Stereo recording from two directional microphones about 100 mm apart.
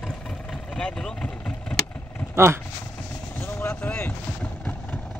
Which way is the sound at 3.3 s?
20° left (ahead or behind).